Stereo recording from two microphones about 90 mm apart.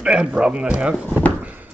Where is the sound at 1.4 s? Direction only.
20° right (ahead or behind).